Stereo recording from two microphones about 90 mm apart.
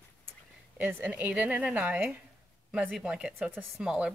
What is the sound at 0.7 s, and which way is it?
Speech, 20° right (ahead or behind).